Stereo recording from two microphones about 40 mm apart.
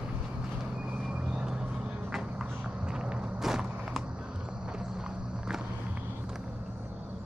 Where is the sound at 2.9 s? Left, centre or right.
Right.